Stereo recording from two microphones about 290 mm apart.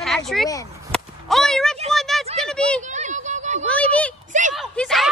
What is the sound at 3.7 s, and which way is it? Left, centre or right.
Speech, centre.